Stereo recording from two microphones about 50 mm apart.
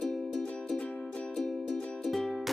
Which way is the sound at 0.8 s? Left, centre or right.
Left.